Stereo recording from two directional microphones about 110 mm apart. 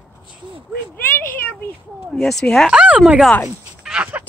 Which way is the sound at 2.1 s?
5° left (ahead or behind).